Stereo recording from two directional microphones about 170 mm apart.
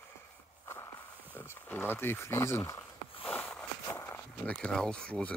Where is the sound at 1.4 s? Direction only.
10° left (ahead or behind).